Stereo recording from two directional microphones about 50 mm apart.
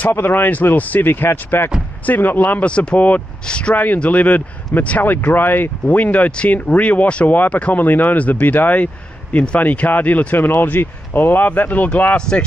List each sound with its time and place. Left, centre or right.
0.1 s speech: left
2.6 s speech: left
3.7 s speech: left
5.9 s speech: left